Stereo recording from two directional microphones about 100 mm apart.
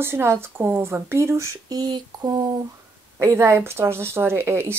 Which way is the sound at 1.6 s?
45° right (ahead or behind).